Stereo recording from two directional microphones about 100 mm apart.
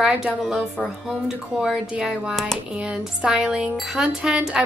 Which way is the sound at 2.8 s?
10° right (ahead or behind).